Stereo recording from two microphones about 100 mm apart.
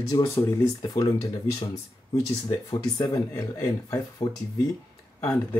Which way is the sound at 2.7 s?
35° left (ahead or behind).